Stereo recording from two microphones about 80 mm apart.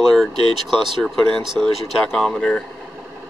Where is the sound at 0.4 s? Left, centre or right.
Right.